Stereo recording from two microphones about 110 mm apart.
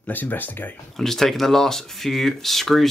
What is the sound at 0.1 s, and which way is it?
Speech, 15° left (ahead or behind).